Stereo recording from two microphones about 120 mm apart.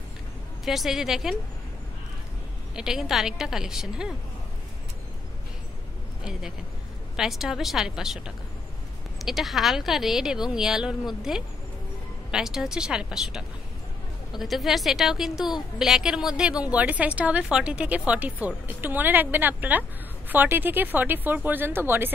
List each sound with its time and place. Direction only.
0.7 s speech: centre (ahead or behind)
2.7 s speech: 5° right (ahead or behind)
7.2 s speech: 5° right (ahead or behind)
9.2 s a woman's voice: centre (ahead or behind); by 22.1 s 20° right (ahead or behind)